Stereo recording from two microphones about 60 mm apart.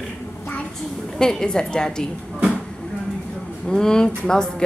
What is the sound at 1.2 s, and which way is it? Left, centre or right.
Speech, centre.